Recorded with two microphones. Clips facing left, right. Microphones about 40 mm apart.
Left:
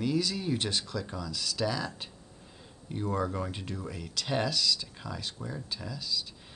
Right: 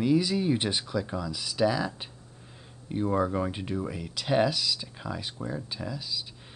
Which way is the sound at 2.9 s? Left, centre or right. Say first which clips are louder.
Right 5 dB; centre.